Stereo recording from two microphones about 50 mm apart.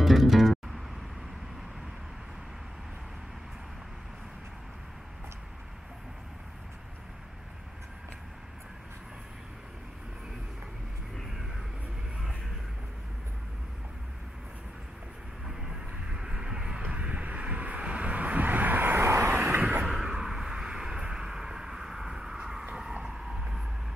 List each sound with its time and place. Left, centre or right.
0.0 s music: centre
15.4 s vehicle: centre; by 19.3 s right
19.3 s vehicle: right
19.9 s a sound: centre
23.1 s vehicle: centre